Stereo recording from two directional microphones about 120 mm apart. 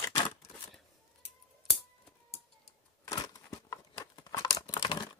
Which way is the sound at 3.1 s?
30° left (ahead or behind).